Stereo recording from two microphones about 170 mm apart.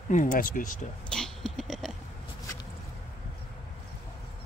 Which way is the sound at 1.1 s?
Centre (ahead or behind).